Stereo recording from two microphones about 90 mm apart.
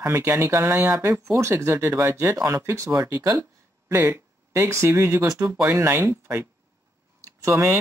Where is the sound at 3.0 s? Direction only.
45° right (ahead or behind).